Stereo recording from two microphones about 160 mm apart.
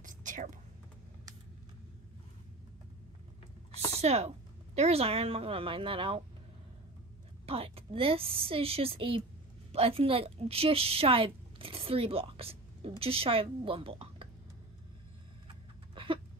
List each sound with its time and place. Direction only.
0.0 s whispering: 55° right (ahead or behind)
3.9 s a woman's voice: 40° right (ahead or behind)
7.4 s a woman's voice: 35° right (ahead or behind)
15.9 s a sound: 30° right (ahead or behind)